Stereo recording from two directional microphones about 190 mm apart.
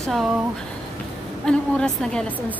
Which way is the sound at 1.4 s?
5° left (ahead or behind).